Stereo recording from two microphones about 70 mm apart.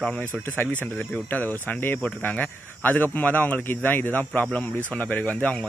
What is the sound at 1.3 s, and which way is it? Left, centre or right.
Speech, left.